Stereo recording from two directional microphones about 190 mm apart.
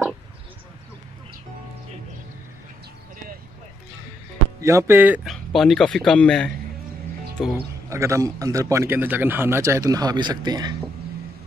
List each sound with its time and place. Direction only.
4.6 s speech: 15° right (ahead or behind); by 6.5 s 5° left (ahead or behind)
7.4 s a man's voice: 10° right (ahead or behind)